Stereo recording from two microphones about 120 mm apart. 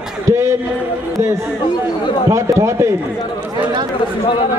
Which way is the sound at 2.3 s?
25° right (ahead or behind).